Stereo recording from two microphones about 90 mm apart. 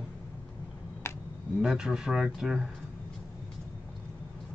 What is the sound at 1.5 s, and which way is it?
Speech, 5° right (ahead or behind).